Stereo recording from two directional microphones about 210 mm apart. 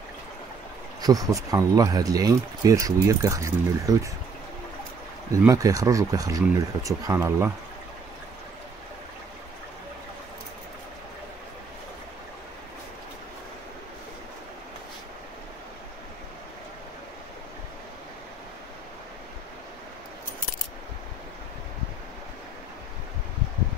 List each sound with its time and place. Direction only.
1.0 s speech: 15° right (ahead or behind)
5.3 s speech: 15° right (ahead or behind)